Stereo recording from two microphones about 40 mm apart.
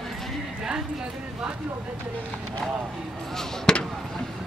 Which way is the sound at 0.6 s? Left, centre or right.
Centre.